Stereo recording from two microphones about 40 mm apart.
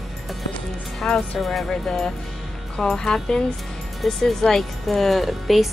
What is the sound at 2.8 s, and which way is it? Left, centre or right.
A woman's voice, centre.